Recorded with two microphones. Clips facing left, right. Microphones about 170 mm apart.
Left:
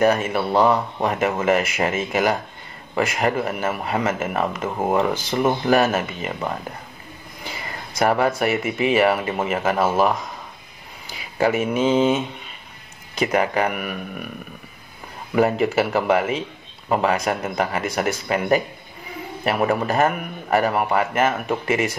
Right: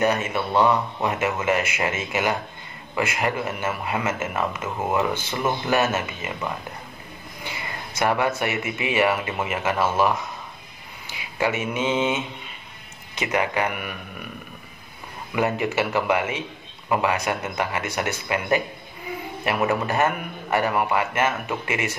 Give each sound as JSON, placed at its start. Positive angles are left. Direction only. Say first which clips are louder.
{"t": 0.0, "sound": "speech", "louder": "left 4 dB", "side_deg": 35}
{"t": 7.4, "sound": "a sound", "louder": "left 1 dB", "side_deg": 35}
{"t": 8.4, "sound": "speech", "louder": "left 5 dB", "side_deg": 35}
{"t": 11.1, "sound": "speech", "louder": "left 4 dB", "side_deg": 35}
{"t": 15.3, "sound": "speech", "louder": "left 5 dB", "side_deg": 35}